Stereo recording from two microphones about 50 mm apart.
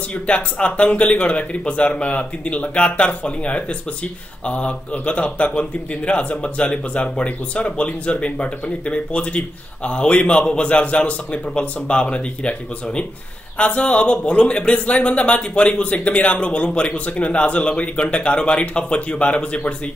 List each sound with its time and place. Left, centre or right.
0.1 s a man's voice: left